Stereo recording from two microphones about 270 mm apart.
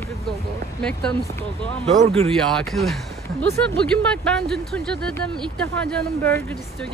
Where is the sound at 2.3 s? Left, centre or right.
Centre.